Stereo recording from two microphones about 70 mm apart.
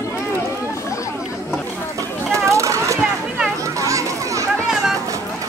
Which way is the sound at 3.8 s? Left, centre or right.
Right.